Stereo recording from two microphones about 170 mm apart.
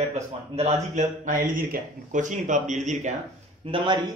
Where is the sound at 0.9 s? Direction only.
55° right (ahead or behind).